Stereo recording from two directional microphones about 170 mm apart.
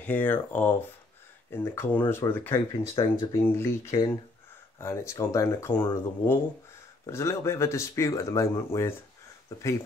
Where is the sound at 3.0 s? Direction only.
30° left (ahead or behind).